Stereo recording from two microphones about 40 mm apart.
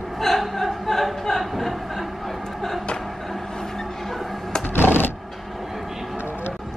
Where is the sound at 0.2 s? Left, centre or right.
Centre.